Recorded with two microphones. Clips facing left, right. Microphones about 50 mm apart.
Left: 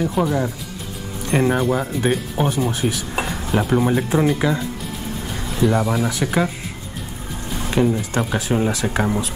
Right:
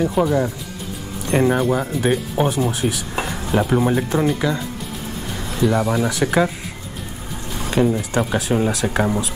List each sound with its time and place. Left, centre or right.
0.0 s speech: centre
4.1 s speech: centre